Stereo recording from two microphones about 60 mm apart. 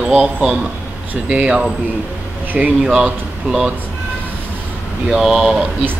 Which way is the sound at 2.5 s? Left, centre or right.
Centre.